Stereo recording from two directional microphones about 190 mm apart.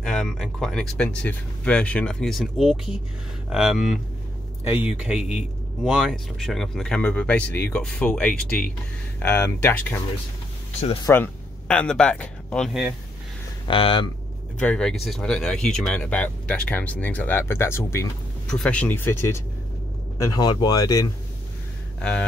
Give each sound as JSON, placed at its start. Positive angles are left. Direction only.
{"t": 0.0, "sound": "speech", "side_deg": 5}
{"t": 11.1, "sound": "speech", "side_deg": 10}
{"t": 13.7, "sound": "speech", "side_deg": 25}
{"t": 14.6, "sound": "speech", "side_deg": 5}
{"t": 20.3, "sound": "speech", "side_deg": 20}